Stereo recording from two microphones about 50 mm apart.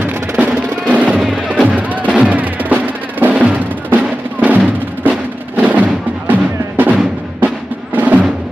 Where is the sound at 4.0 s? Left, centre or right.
Right.